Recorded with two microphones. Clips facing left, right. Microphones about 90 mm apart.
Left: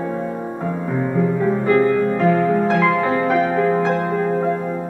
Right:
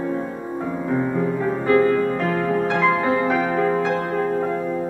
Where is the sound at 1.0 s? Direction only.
Centre (ahead or behind).